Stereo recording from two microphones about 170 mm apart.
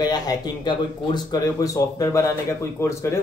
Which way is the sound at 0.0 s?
25° left (ahead or behind).